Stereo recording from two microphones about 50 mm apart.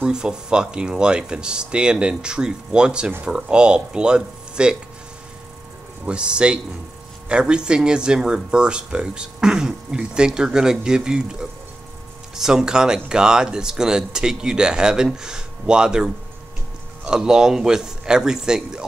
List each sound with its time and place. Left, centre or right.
0.0 s speech: centre
6.0 s speech: centre